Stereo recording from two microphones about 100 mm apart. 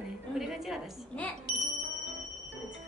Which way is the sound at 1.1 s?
15° left (ahead or behind).